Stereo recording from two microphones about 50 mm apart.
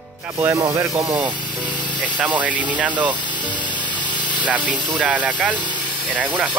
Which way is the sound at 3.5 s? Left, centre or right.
Left.